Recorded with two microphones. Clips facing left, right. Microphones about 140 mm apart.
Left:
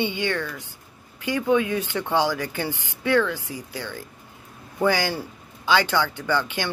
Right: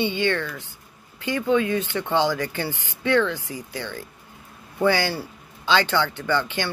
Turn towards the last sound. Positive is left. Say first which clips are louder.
# right 1 dB
turn(degrees=15)  # may be behind; listen again after turning